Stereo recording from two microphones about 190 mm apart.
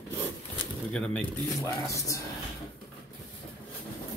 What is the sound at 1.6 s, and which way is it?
Speech, 15° left (ahead or behind).